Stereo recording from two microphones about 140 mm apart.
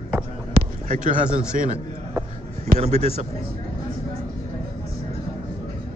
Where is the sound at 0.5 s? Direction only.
70° right (ahead or behind).